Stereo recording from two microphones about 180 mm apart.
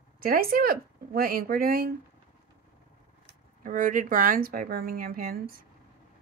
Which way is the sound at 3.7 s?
45° right (ahead or behind).